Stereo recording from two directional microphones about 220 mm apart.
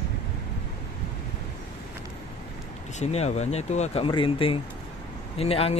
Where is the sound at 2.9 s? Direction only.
30° left (ahead or behind).